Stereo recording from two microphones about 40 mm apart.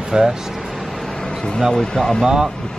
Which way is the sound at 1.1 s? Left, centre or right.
Centre.